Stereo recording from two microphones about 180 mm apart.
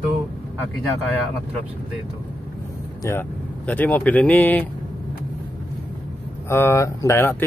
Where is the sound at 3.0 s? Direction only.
10° left (ahead or behind).